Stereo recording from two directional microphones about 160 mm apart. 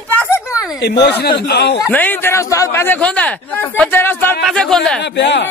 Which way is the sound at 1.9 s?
10° left (ahead or behind).